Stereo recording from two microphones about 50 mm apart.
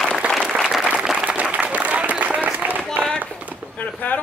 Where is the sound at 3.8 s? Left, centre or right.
Left.